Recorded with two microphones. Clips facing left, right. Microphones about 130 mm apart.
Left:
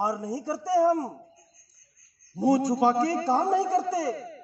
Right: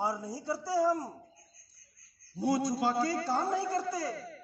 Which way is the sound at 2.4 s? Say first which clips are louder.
Left 7 dB; 90° left.